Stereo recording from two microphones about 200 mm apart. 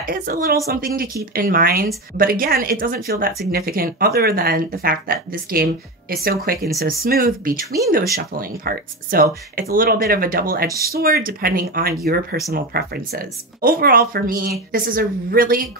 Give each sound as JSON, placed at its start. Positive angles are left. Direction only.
{"t": 0.0, "sound": "speech", "side_deg": -45}